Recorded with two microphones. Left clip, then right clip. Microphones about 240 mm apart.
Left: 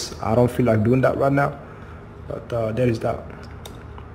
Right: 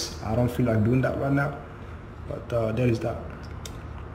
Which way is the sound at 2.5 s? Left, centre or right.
Centre.